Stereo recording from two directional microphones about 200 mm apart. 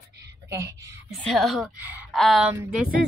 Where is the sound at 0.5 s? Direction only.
15° right (ahead or behind).